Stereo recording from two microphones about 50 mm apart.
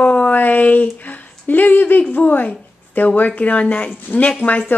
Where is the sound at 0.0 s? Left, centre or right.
Left.